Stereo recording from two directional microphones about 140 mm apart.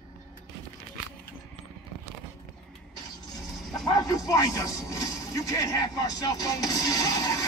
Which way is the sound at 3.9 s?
30° left (ahead or behind).